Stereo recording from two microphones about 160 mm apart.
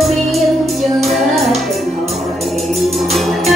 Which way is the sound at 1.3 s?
Centre (ahead or behind).